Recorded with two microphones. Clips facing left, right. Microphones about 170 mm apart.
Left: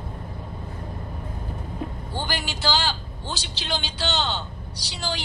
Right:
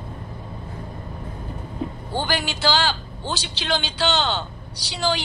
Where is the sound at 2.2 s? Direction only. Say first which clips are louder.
Right 5 dB; 75° right (ahead or behind).